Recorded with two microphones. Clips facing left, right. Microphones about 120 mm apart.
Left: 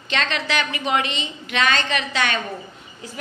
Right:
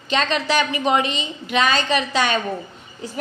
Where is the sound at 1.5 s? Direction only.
10° right (ahead or behind).